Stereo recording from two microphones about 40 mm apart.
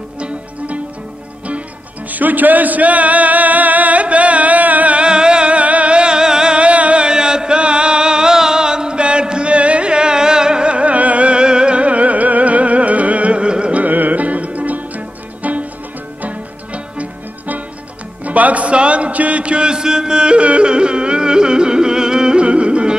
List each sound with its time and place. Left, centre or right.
2.0 s music: right
5.0 s music: right
13.8 s music: right